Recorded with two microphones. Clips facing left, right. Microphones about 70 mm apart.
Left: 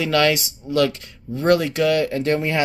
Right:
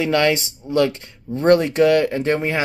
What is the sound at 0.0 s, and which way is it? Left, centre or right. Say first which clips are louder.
Speech: right 1 dB; right.